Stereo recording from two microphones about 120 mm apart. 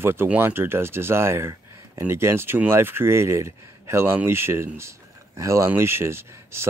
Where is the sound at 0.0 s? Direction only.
20° right (ahead or behind).